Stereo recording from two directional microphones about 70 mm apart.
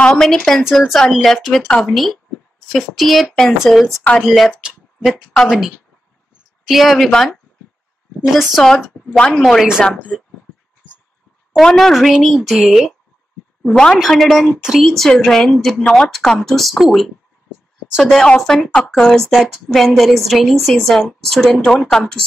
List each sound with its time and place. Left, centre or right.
0.0 s a woman's voice: centre
4.0 s speech: centre
4.3 s a woman's voice: centre
6.7 s a woman's voice: centre
8.3 s a woman's voice: centre
11.5 s a woman's voice: centre
13.7 s a woman's voice: centre
14.9 s a woman's voice: centre
18.4 s a woman's voice: centre